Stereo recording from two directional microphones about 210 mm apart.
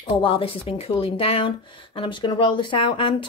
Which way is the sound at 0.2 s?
25° left (ahead or behind).